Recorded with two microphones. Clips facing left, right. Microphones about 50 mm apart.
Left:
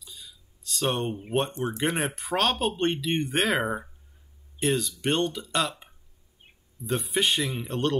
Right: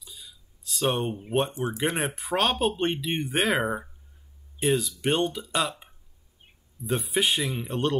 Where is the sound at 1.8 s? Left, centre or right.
Centre.